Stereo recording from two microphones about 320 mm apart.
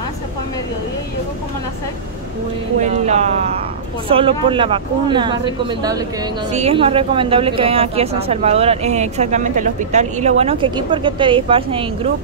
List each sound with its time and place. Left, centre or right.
2.8 s a woman's voice: right